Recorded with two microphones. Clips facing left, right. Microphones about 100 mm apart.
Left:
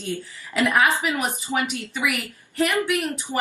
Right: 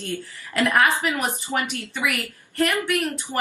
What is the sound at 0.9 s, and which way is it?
Speech, 20° left (ahead or behind).